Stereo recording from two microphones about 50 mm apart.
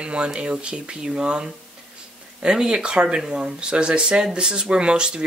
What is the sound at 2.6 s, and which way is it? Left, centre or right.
Speech, centre.